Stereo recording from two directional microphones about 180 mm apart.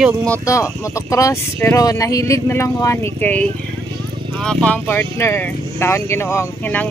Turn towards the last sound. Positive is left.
turn(degrees=10)  # may be behind; listen again after turning